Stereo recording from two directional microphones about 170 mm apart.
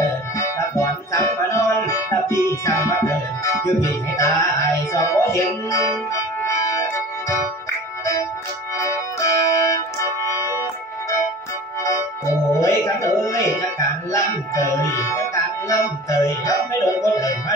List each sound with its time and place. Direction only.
0.4 s music: 15° left (ahead or behind)
4.2 s music: 20° left (ahead or behind)
8.7 s music: 20° left (ahead or behind)
12.5 s music: 20° left (ahead or behind)